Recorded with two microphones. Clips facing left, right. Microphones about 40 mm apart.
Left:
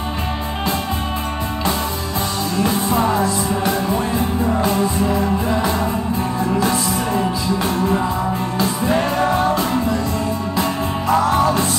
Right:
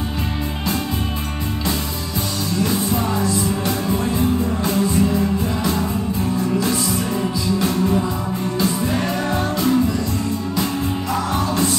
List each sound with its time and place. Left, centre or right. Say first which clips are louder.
2.6 s music: left 3 dB; left
4.6 s music: even; left
11.1 s music: left 9 dB; left